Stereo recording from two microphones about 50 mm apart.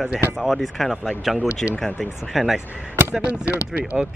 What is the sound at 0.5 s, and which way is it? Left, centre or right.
Speech, centre.